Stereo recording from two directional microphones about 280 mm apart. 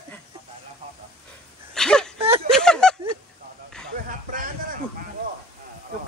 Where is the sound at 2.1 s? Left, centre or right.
Centre.